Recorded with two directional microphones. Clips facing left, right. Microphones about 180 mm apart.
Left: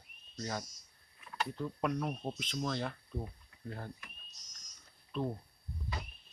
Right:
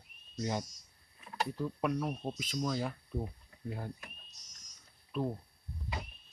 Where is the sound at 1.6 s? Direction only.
5° right (ahead or behind).